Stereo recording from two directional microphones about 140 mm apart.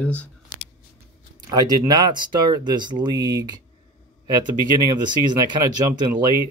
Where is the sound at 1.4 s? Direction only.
30° right (ahead or behind).